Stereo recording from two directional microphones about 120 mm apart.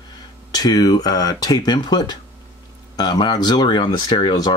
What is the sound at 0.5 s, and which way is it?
Speech, 30° left (ahead or behind).